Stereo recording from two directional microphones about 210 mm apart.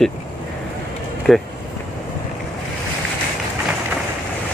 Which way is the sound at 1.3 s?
Centre (ahead or behind).